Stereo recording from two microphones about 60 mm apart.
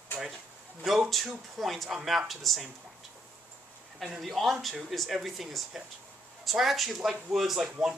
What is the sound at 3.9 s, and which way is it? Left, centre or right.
Speech, centre.